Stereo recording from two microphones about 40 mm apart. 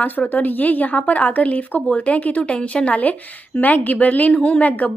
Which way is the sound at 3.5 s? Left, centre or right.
Left.